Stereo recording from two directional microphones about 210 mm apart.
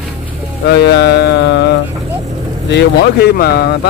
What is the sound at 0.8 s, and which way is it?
Speech, 50° left (ahead or behind).